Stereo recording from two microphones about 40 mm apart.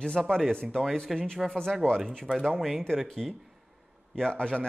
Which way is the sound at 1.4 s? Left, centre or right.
Centre.